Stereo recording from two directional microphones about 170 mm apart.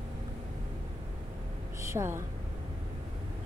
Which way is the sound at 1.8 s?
15° right (ahead or behind).